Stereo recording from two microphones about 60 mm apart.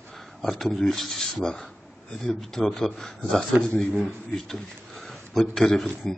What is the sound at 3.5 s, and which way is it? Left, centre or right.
Speech, right.